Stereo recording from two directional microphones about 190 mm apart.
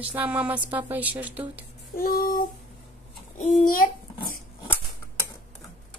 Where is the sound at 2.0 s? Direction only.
50° left (ahead or behind).